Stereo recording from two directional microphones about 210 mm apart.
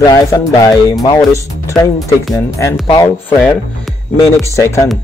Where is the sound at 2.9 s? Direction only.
20° left (ahead or behind).